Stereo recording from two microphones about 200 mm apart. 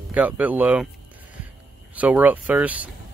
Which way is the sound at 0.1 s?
10° right (ahead or behind).